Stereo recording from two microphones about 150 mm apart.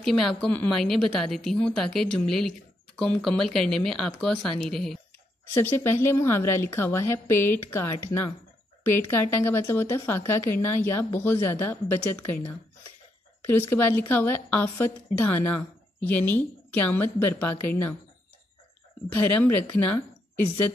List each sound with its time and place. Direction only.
0.0 s speech: centre (ahead or behind)
5.5 s speech: 15° left (ahead or behind)
19.1 s speech: 15° left (ahead or behind)